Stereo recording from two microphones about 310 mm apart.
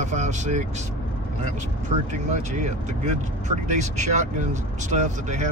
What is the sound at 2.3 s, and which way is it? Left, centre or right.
Speech, right.